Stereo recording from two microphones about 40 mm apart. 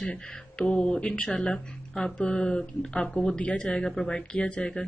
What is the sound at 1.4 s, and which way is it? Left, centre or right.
Speech, left.